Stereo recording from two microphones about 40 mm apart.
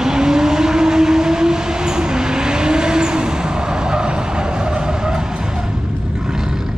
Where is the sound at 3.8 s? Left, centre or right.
Right.